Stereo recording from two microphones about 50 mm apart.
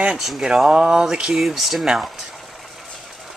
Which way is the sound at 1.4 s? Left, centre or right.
Centre.